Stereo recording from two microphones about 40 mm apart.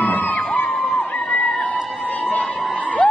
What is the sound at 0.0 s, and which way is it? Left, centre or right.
Crowd, left.